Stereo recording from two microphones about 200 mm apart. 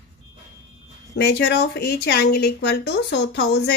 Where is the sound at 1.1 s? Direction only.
55° left (ahead or behind).